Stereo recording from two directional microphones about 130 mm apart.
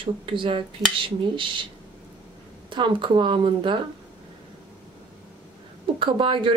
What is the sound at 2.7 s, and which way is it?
Speech, 40° right (ahead or behind).